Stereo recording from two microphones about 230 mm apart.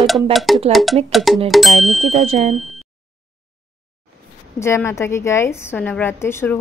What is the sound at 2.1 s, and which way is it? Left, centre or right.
Speech, right.